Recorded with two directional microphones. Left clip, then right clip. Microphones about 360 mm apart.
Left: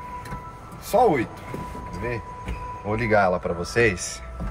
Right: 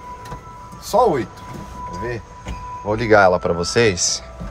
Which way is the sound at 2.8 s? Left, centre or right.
Centre.